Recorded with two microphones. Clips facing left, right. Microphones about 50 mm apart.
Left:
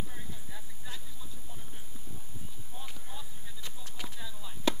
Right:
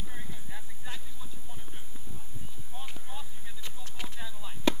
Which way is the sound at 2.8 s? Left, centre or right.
Right.